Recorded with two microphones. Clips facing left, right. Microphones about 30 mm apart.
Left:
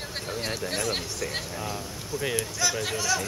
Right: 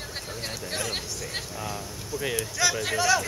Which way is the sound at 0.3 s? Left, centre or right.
Centre.